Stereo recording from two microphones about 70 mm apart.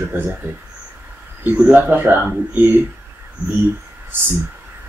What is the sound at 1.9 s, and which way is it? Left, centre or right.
Speech, right.